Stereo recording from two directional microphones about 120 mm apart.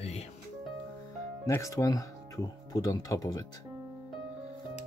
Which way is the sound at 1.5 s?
25° left (ahead or behind).